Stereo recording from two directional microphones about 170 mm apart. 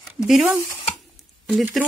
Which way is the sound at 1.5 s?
Centre (ahead or behind).